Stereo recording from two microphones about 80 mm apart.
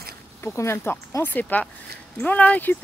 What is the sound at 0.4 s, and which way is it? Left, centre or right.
Speech, left.